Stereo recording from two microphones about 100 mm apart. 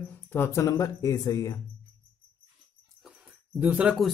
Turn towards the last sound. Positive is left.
turn(degrees=-15)  # may be behind; listen again after turning